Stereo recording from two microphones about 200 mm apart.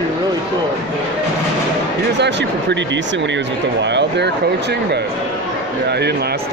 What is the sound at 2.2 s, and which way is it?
Speech, 60° right (ahead or behind).